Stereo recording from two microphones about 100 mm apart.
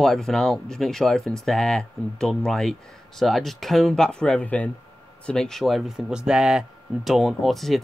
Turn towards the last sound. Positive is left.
turn(degrees=0)  # may be behind; listen again after turning